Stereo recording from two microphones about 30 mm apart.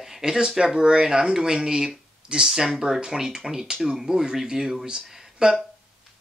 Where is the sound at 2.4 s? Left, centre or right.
Centre.